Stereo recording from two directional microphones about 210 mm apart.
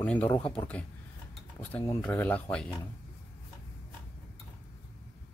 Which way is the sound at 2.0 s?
10° left (ahead or behind).